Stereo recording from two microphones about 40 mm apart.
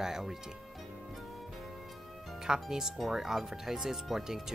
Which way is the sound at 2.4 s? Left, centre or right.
Centre.